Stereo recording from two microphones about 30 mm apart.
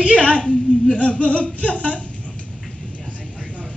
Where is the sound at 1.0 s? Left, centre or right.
Left.